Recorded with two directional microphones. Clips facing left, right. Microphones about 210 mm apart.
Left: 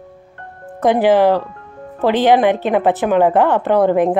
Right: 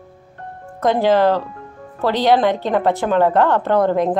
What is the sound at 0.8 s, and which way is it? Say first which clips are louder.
A woman's voice: left 3 dB; 15° left (ahead or behind).